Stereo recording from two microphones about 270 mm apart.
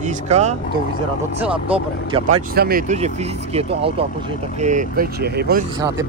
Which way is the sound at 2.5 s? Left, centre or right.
Right.